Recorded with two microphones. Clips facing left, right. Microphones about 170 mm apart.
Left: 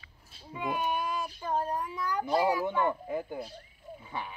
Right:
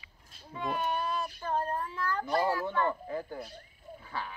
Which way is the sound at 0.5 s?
10° left (ahead or behind).